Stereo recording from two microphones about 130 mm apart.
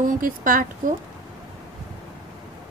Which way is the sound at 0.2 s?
90° right.